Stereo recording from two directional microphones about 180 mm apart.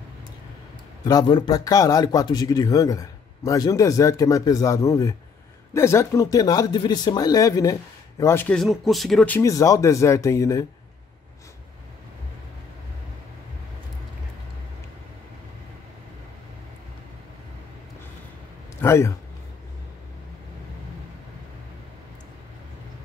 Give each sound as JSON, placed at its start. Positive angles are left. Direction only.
{"t": 1.0, "sound": "speech", "side_deg": 20}
{"t": 9.4, "sound": "speech", "side_deg": 15}
{"t": 18.8, "sound": "speech", "side_deg": 15}